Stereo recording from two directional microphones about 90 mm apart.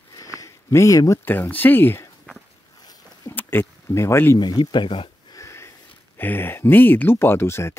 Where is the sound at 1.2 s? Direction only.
25° left (ahead or behind).